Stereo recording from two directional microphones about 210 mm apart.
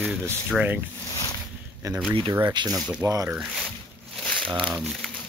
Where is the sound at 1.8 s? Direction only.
15° right (ahead or behind).